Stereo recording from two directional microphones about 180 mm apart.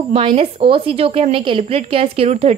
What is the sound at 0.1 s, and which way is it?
A woman's voice, 30° right (ahead or behind).